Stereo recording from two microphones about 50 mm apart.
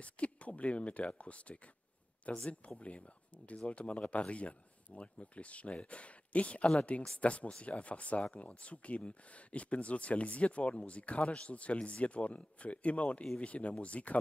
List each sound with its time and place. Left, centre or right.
0.0 s speech: left